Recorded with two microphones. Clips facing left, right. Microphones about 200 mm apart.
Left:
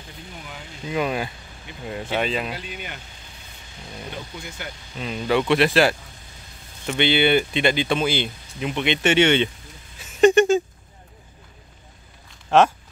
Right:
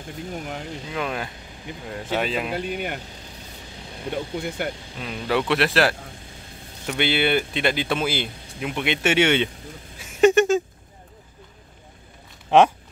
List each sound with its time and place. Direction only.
0.3 s speech: 45° right (ahead or behind)
0.8 s speech: 5° left (ahead or behind)
2.2 s speech: 5° right (ahead or behind)
2.5 s speech: 55° right (ahead or behind)
4.4 s speech: 55° right (ahead or behind)
5.0 s speech: centre (ahead or behind)
10.2 s a sound: 5° right (ahead or behind)
12.4 s speech: 15° right (ahead or behind)